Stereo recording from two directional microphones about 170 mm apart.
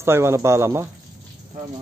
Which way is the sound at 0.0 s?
15° right (ahead or behind).